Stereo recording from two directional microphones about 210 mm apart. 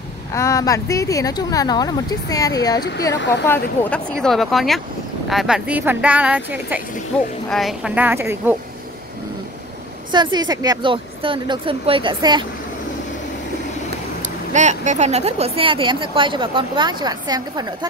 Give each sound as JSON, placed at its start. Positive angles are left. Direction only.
{"t": 0.3, "sound": "speech", "side_deg": 15}
{"t": 10.1, "sound": "speech", "side_deg": -20}
{"t": 14.5, "sound": "speech", "side_deg": -35}